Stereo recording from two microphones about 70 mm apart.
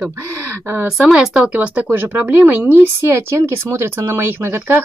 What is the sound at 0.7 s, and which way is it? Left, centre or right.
Speech, right.